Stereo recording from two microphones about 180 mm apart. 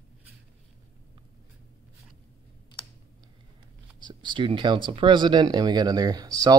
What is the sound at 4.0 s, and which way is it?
Speech, 25° right (ahead or behind).